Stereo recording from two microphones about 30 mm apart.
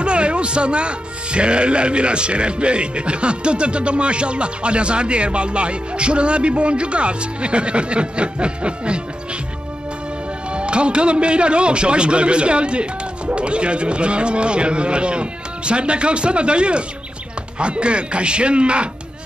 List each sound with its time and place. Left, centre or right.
0.0 s a man's voice: right
10.5 s a man's voice: right